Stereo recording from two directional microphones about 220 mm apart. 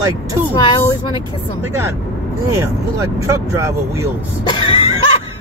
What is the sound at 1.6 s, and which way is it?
Speech, 10° right (ahead or behind).